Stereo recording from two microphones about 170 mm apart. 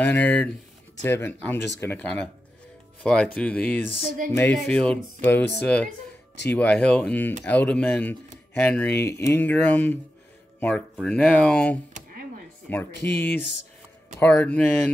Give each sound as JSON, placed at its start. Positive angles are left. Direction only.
{"t": 0.0, "sound": "speech", "side_deg": 10}
{"t": 6.5, "sound": "speech", "side_deg": 10}
{"t": 12.9, "sound": "speech", "side_deg": 75}
{"t": 13.2, "sound": "speech", "side_deg": 10}